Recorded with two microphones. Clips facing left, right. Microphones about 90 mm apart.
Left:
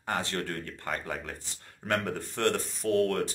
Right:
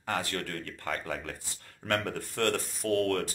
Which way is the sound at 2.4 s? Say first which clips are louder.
Left 1 dB; 20° left (ahead or behind).